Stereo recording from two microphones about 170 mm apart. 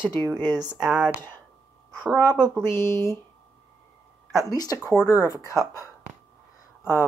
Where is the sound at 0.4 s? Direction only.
25° right (ahead or behind).